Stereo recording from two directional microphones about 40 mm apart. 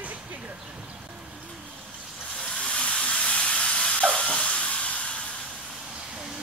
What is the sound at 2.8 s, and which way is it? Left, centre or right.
Steam, left.